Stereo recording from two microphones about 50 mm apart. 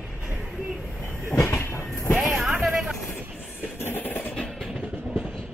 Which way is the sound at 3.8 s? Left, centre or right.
Left.